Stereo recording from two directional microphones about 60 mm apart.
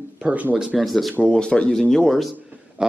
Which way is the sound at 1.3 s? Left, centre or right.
Centre.